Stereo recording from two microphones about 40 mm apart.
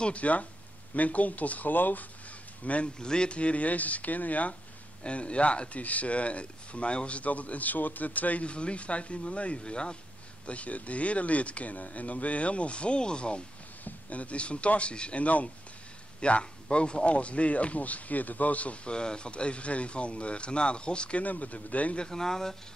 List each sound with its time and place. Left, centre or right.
0.0 s speech: left
2.6 s speech: left
3.0 s speech: left
5.0 s speech: left
10.4 s speech: left
13.8 s speech: left
18.9 s speech: left
21.2 s speech: left
21.9 s speech: centre